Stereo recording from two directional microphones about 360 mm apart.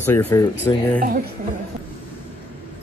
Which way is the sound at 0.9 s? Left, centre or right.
Right.